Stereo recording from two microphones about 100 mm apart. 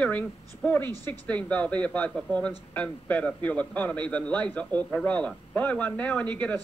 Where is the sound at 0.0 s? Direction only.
15° left (ahead or behind).